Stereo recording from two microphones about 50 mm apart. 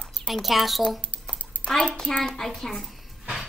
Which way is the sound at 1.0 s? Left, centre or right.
Left.